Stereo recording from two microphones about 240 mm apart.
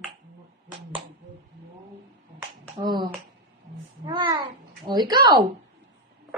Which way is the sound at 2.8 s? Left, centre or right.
Right.